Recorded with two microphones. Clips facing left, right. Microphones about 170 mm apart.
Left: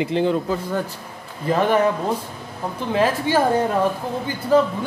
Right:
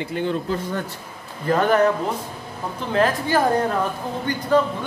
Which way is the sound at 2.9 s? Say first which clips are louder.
Even; 5° left (ahead or behind).